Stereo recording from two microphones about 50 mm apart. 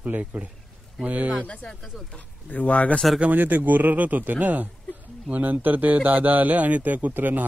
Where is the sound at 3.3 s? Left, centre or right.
Right.